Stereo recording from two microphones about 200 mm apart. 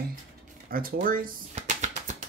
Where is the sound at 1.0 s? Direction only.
45° right (ahead or behind).